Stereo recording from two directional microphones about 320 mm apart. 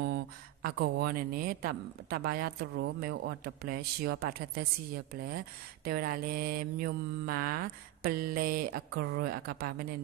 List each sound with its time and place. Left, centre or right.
0.0 s speech: right